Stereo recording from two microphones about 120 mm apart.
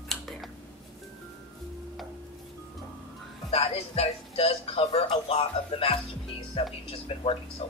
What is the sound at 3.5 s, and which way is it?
Speech, 55° left (ahead or behind).